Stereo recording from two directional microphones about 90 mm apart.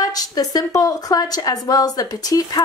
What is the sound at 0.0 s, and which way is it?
A woman's voice, 45° left (ahead or behind).